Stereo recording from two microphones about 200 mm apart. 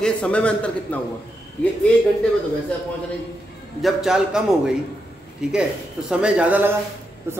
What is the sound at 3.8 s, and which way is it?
A man's voice, centre (ahead or behind).